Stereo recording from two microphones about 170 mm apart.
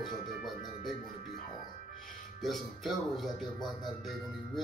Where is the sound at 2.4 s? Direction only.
Centre (ahead or behind).